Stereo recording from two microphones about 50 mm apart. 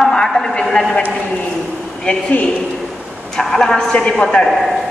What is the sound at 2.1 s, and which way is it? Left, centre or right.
Speech, left.